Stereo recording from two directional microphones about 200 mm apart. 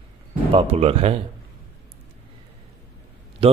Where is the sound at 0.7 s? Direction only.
30° right (ahead or behind).